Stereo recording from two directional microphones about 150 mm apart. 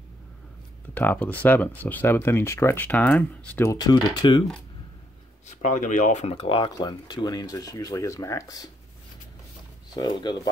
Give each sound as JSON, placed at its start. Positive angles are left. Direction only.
{"t": 0.9, "sound": "speech", "side_deg": 10}
{"t": 3.7, "sound": "speech", "side_deg": 25}
{"t": 5.5, "sound": "speech", "side_deg": 55}
{"t": 9.9, "sound": "speech", "side_deg": 30}